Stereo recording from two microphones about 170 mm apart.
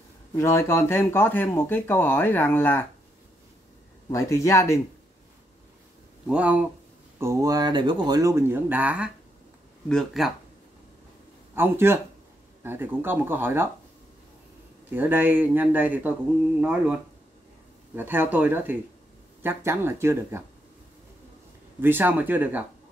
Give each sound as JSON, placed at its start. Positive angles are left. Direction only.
{"t": 0.4, "sound": "speech", "side_deg": 15}
{"t": 4.1, "sound": "speech", "side_deg": 20}
{"t": 6.2, "sound": "speech", "side_deg": -5}
{"t": 11.5, "sound": "speech", "side_deg": -15}
{"t": 14.9, "sound": "speech", "side_deg": -10}
{"t": 17.9, "sound": "speech", "side_deg": -10}
{"t": 21.8, "sound": "speech", "side_deg": -10}